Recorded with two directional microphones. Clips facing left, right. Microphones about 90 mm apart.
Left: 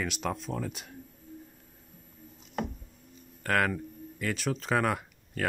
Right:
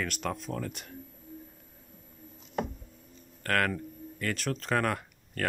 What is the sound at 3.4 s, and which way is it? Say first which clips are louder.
Speech: left 1 dB; 5° left (ahead or behind).